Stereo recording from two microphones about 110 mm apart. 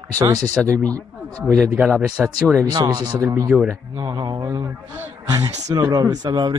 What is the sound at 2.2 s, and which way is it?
Speech, 5° right (ahead or behind).